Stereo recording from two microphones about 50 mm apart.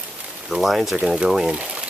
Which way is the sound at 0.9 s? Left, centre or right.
Centre.